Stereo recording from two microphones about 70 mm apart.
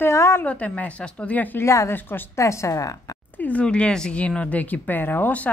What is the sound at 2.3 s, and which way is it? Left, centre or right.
Speech, left.